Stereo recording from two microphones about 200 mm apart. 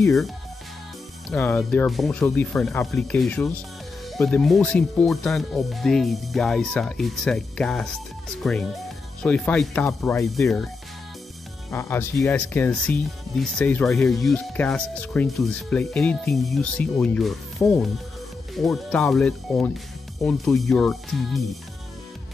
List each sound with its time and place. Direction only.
1.3 s speech: 5° left (ahead or behind)
11.7 s speech: 15° left (ahead or behind)
18.5 s speech: centre (ahead or behind)